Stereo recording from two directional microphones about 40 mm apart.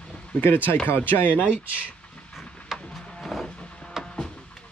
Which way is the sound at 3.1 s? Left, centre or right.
Centre.